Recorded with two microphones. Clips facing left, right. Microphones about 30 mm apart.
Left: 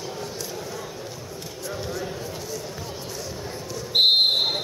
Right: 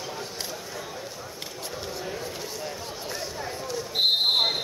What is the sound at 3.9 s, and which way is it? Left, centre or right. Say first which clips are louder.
Basketball bounce: left 5 dB; left.